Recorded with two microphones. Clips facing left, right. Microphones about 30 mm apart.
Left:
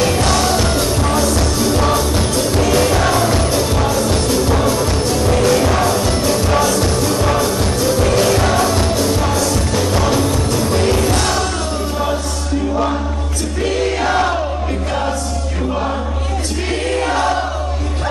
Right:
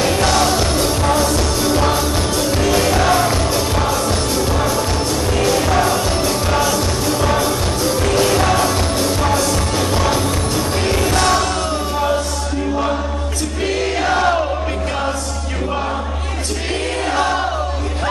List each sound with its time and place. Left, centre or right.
0.0 s music: centre
3.7 s music: centre
4.3 s music: centre
5.9 s music: centre
10.7 s music: centre